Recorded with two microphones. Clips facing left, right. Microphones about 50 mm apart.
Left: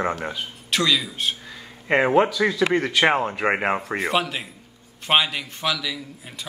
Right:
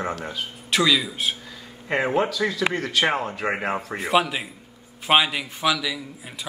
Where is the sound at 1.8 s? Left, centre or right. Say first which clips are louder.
Left 4 dB; left.